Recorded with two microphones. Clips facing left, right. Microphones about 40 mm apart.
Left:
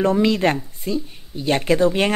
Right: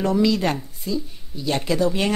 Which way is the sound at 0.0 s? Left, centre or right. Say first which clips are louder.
Left 2 dB; left.